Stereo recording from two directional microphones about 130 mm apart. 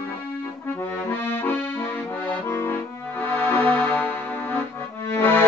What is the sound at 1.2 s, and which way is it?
Accordion, 15° left (ahead or behind).